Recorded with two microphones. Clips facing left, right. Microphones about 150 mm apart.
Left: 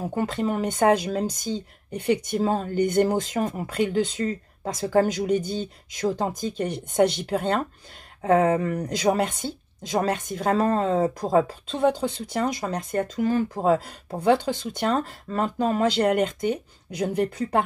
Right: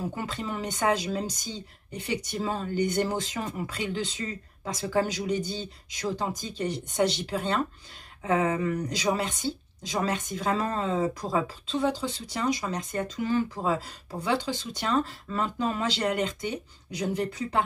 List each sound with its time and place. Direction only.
0.1 s speech: 50° left (ahead or behind)